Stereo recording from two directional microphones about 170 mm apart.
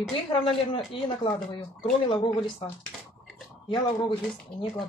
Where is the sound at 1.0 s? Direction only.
30° left (ahead or behind).